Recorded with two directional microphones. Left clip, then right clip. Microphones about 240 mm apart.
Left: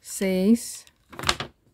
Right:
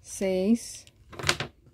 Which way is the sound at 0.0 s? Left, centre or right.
Left.